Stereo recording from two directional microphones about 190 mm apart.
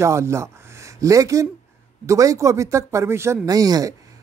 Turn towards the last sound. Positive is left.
turn(degrees=-20)  # may be behind; listen again after turning